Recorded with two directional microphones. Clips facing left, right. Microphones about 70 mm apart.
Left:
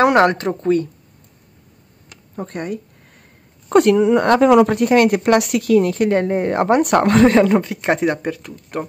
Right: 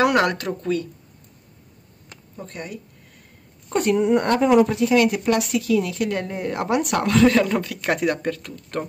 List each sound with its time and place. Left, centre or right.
0.0 s speech: left
2.3 s speech: left
3.6 s speech: left; by 8.8 s centre